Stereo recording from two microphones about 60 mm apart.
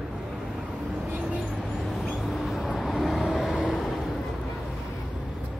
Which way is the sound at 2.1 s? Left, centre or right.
Centre.